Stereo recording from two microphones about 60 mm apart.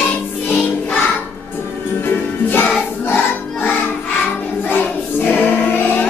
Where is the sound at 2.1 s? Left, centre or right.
Left.